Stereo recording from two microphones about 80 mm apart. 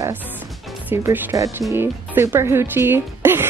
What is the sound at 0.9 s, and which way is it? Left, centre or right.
Speech, right.